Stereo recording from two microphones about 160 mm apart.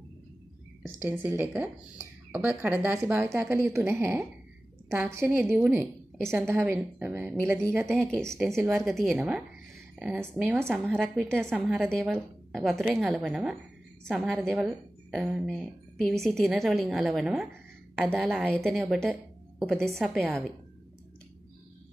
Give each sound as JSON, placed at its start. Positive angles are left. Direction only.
{"t": 0.8, "sound": "a woman's voice", "side_deg": -15}
{"t": 8.0, "sound": "a woman's voice", "side_deg": 5}
{"t": 10.9, "sound": "a woman's voice", "side_deg": 5}